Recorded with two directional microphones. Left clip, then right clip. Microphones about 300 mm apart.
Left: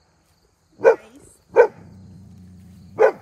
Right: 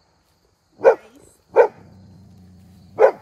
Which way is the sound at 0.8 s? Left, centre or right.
Right.